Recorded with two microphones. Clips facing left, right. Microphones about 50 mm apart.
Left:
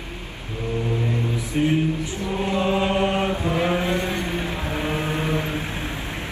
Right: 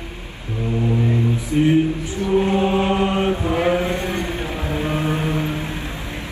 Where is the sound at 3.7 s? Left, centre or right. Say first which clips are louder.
Right 2 dB; right.